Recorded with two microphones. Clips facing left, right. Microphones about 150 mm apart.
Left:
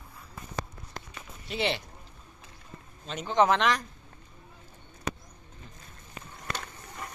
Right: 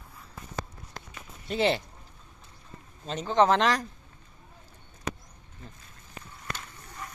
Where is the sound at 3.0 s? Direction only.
35° right (ahead or behind).